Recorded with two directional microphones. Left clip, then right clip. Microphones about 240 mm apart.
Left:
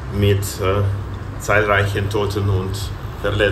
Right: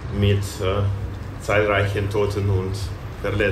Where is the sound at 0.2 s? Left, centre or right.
Left.